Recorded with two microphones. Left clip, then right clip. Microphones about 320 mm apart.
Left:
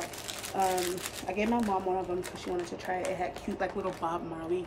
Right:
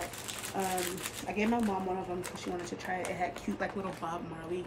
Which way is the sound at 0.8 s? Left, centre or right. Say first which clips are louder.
Left 3 dB; centre.